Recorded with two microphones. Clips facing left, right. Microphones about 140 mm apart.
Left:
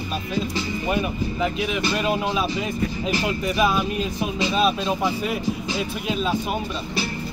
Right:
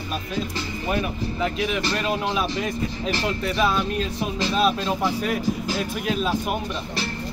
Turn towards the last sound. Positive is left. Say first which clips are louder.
# even
turn(degrees=0)  # may be behind; listen again after turning